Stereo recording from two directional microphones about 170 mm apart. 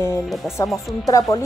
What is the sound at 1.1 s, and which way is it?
Speech, 20° left (ahead or behind).